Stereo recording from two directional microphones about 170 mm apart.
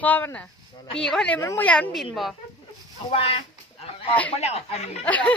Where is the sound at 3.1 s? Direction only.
35° left (ahead or behind).